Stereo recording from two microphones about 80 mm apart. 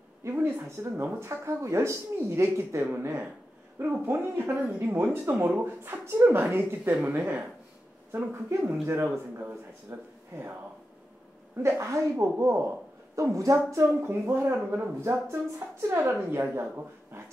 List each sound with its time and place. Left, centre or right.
0.2 s speech: right
1.2 s speech: right
4.7 s speech: right
11.6 s a woman's voice: right